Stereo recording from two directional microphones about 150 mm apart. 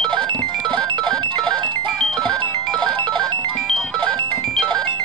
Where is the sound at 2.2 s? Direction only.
30° right (ahead or behind).